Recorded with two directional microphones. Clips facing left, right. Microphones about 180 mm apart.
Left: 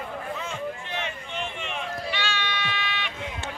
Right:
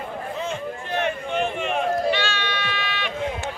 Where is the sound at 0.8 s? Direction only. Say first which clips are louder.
Right 9 dB; 50° right (ahead or behind).